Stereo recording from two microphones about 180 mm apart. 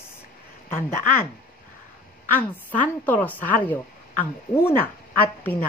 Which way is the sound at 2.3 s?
10° left (ahead or behind).